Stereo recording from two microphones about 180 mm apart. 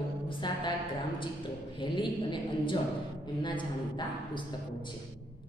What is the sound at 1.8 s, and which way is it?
Speech, 25° left (ahead or behind).